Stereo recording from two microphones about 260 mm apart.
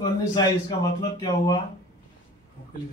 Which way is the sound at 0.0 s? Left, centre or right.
Centre.